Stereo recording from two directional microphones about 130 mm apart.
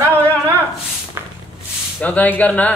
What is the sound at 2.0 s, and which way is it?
Speech, 10° left (ahead or behind).